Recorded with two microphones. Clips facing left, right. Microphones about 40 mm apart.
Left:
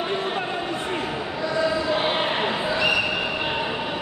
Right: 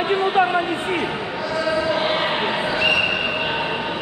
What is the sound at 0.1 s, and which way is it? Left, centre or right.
Speech, right.